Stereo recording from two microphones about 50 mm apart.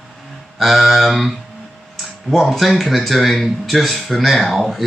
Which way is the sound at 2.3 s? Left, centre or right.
Centre.